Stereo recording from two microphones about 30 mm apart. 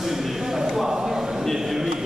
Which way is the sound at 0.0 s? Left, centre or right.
Centre.